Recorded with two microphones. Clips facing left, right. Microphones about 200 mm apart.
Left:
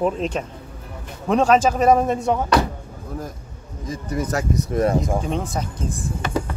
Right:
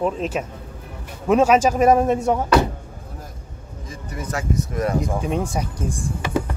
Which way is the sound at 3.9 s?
40° left (ahead or behind).